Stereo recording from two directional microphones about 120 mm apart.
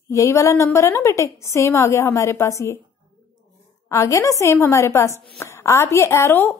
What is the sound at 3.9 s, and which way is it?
A woman's voice, 25° left (ahead or behind).